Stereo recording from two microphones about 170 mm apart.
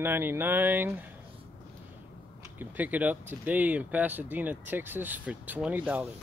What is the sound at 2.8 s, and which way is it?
Speech, 10° right (ahead or behind).